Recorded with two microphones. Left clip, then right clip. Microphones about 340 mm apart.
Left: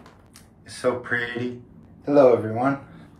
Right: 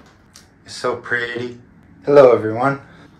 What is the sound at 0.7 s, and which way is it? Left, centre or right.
Speech, centre.